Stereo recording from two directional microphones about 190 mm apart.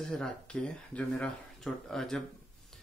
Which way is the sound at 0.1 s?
5° left (ahead or behind).